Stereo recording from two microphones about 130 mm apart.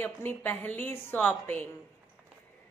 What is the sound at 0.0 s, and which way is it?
Speech, 15° left (ahead or behind).